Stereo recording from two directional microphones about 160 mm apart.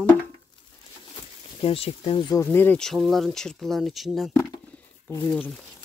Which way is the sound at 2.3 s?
15° left (ahead or behind).